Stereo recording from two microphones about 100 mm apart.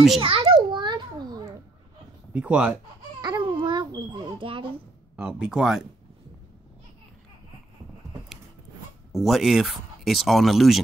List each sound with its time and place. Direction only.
0.2 s a sound: 65° right (ahead or behind)
0.7 s a sound: 50° right (ahead or behind)
2.3 s speech: 15° right (ahead or behind)
3.2 s babbling: 50° right (ahead or behind)
5.1 s speech: 10° right (ahead or behind)
9.1 s speech: centre (ahead or behind)